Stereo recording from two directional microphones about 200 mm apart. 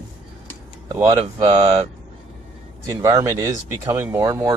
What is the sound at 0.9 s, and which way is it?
Speech, 15° right (ahead or behind).